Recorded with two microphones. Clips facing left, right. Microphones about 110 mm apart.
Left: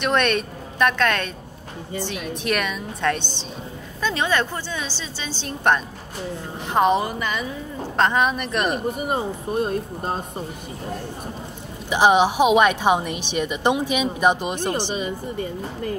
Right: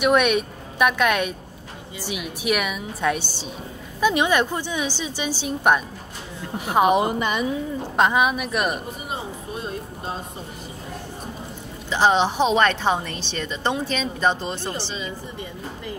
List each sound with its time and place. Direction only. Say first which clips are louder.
0.0 s a woman's voice: right 2 dB; 10° right (ahead or behind)
7.0 s a woman's voice: right 3 dB; 20° right (ahead or behind)
7.9 s a woman's voice: even; 10° right (ahead or behind)
9.0 s speech: left 7 dB; 55° left (ahead or behind)
11.9 s a woman's voice: left 2 dB; 15° left (ahead or behind)